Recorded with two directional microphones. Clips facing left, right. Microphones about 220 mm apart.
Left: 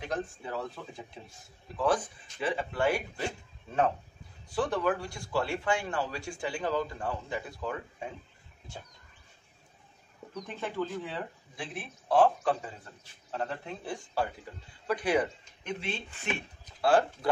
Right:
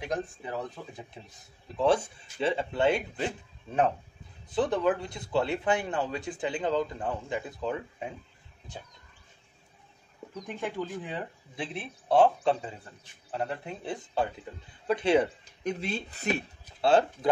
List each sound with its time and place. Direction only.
0.0 s speech: 15° right (ahead or behind)
10.4 s speech: 15° right (ahead or behind)
15.6 s speech: 40° right (ahead or behind)
16.8 s speech: 25° right (ahead or behind)